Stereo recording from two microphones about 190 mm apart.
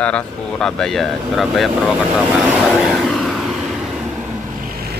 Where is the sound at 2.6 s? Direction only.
Centre (ahead or behind).